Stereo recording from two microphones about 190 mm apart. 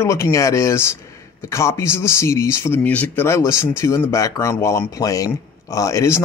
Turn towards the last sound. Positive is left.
turn(degrees=15)  # may be behind; listen again after turning